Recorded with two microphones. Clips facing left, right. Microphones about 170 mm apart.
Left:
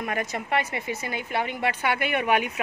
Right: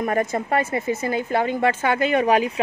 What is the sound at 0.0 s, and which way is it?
Speech, 30° right (ahead or behind).